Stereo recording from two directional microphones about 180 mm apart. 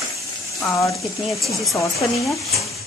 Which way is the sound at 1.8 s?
15° left (ahead or behind).